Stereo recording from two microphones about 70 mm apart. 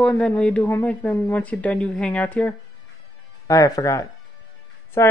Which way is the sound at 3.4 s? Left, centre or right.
Left.